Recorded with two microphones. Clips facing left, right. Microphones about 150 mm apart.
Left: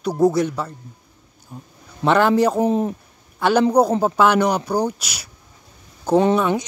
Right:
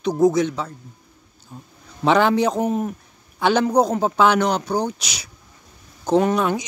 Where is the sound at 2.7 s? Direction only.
30° left (ahead or behind).